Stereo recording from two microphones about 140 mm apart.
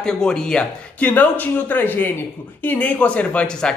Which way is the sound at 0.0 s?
5° left (ahead or behind).